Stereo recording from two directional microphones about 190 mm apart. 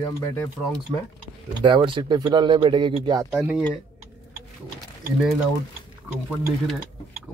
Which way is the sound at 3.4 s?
5° right (ahead or behind).